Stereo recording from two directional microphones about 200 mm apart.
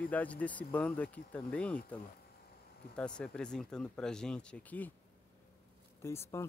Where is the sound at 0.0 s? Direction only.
5° left (ahead or behind).